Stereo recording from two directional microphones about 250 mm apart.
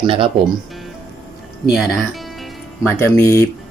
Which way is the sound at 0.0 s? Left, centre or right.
Right.